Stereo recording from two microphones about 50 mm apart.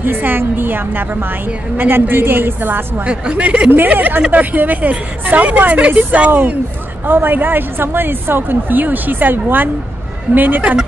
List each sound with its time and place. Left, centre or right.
0.0 s a woman's voice: right
3.1 s speech: right
6.3 s speech: right